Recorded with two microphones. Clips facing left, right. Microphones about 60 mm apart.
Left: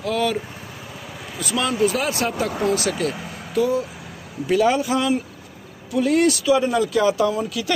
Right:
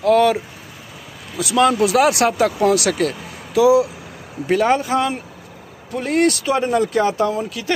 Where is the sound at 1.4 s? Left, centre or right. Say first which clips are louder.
Right 5 dB; right.